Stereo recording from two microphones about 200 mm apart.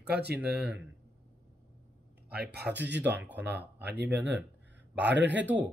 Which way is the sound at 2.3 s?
55° right (ahead or behind).